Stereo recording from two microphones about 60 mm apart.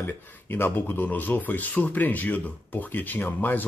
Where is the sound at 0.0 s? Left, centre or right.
Left.